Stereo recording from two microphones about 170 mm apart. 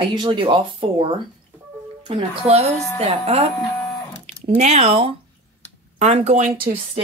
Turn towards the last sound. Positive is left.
turn(degrees=-40)  # may be behind; listen again after turning